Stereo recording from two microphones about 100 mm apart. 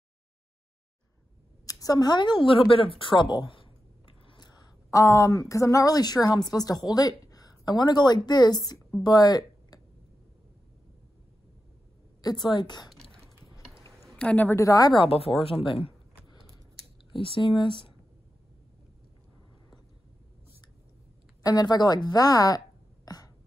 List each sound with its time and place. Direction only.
1.7 s a woman's voice: 35° left (ahead or behind)
12.2 s a woman's voice: 45° left (ahead or behind)
14.0 s a sound: 10° left (ahead or behind)
14.5 s speech: 35° left (ahead or behind)
15.0 s speech: 75° left (ahead or behind)
15.6 s speech: 65° left (ahead or behind)
17.1 s speech: 60° left (ahead or behind)
21.4 s speech: 35° left (ahead or behind)
23.0 s a sound: 40° left (ahead or behind)